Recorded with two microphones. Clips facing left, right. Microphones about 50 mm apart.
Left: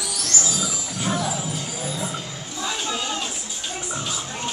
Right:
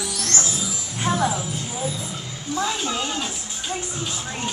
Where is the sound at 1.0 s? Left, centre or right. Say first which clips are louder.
Right 3 dB; right.